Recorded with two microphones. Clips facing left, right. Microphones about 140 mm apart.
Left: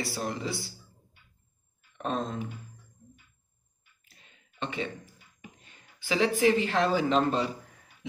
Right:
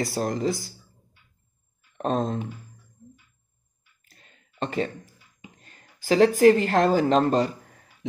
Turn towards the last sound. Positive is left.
turn(degrees=-45)  # may be behind; listen again after turning